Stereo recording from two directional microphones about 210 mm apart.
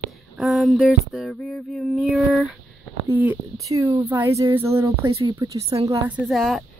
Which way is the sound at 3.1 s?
10° right (ahead or behind).